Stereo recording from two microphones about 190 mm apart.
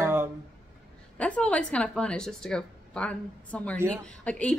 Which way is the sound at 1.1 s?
5° left (ahead or behind).